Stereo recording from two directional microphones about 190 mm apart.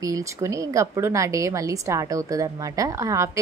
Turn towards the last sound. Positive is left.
turn(degrees=-15)  # may be behind; listen again after turning